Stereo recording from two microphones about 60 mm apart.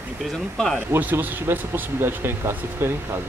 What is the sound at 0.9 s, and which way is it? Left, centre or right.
Speech, right.